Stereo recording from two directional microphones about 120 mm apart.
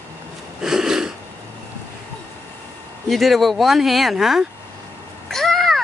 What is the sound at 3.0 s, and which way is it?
Speech, centre (ahead or behind).